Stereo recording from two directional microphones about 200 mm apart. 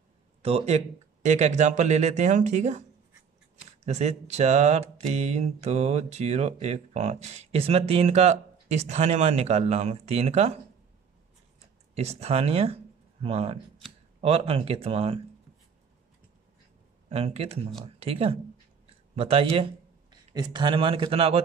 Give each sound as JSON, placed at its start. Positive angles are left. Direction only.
{"t": 0.4, "sound": "speech", "side_deg": -30}
{"t": 3.8, "sound": "speech", "side_deg": -35}
{"t": 11.9, "sound": "speech", "side_deg": -30}
{"t": 17.1, "sound": "a man's voice", "side_deg": -30}